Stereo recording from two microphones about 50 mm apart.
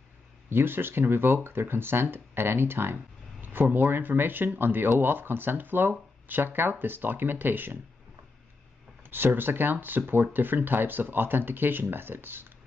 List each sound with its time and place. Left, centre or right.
0.5 s speech: right
3.4 s speech: right
9.0 s speech: right